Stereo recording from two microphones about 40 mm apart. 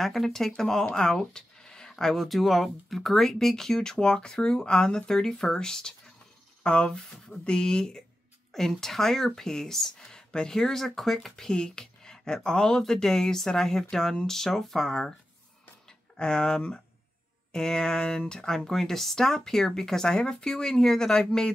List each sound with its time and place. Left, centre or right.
0.0 s speech: centre
6.6 s speech: left
10.5 s speech: centre
16.2 s speech: centre
18.7 s speech: centre